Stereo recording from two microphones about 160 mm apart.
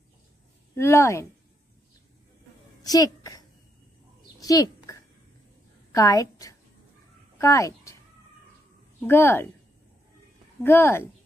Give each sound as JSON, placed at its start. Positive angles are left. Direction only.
{"t": 0.7, "sound": "speech", "side_deg": 15}
{"t": 2.8, "sound": "a sound", "side_deg": 25}
{"t": 5.9, "sound": "a woman's voice", "side_deg": 20}
{"t": 9.0, "sound": "speech", "side_deg": 15}
{"t": 10.6, "sound": "speech", "side_deg": 15}